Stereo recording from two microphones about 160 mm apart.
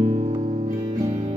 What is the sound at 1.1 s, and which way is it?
Music, 45° right (ahead or behind).